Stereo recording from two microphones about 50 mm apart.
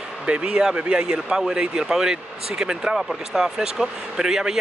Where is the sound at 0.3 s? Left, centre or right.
Centre.